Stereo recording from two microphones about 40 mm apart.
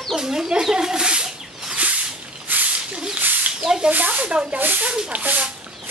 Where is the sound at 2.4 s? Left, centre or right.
Right.